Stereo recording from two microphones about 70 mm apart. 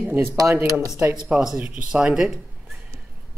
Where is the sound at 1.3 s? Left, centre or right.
Centre.